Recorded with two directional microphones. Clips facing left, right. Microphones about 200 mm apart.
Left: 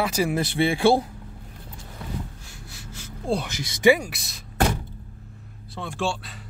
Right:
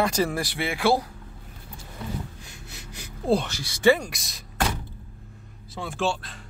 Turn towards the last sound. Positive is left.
turn(degrees=0)  # may be behind; listen again after turning